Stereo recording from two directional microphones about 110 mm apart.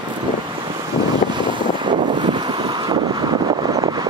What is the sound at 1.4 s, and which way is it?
Wind noise, 45° right (ahead or behind).